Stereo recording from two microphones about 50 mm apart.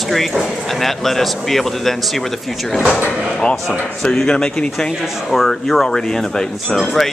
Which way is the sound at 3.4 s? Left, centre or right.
Centre.